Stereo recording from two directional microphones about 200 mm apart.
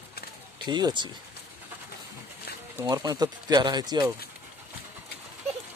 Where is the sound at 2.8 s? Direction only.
20° right (ahead or behind).